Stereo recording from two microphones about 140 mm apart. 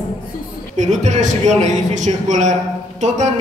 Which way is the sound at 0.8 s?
60° right (ahead or behind).